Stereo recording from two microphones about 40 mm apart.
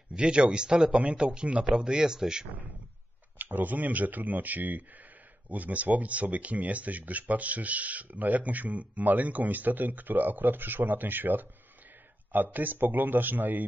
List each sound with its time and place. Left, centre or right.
0.1 s speech: right
3.3 s speech: right